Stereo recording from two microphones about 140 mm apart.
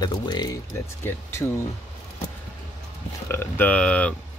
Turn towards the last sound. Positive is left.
turn(degrees=10)  # may be behind; listen again after turning